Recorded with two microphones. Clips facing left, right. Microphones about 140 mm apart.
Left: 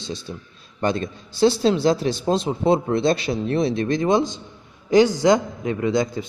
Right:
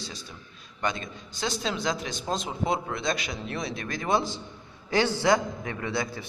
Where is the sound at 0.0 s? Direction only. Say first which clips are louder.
Left 9 dB; 25° left (ahead or behind).